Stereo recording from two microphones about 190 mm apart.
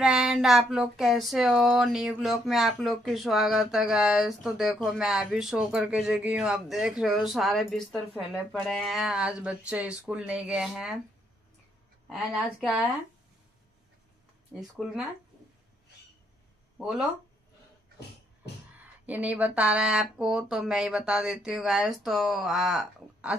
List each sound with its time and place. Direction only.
0.0 s speech: centre (ahead or behind)
12.1 s speech: 5° right (ahead or behind)
14.5 s speech: 5° right (ahead or behind)
16.7 s speech: centre (ahead or behind)
18.4 s music: 60° left (ahead or behind)
19.0 s speech: 10° right (ahead or behind)